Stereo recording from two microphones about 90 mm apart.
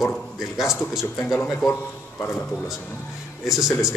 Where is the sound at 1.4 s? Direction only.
15° left (ahead or behind).